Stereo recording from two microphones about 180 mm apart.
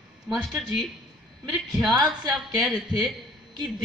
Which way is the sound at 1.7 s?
Centre (ahead or behind).